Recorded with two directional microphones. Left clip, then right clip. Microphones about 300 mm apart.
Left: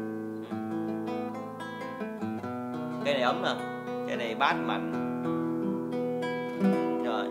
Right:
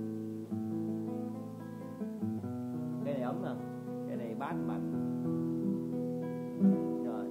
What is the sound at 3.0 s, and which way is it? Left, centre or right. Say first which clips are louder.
Music: left 11 dB; centre.